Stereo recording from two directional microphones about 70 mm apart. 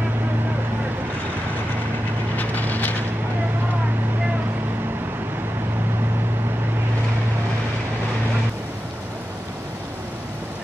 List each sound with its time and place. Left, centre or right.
2.3 s vehicle: left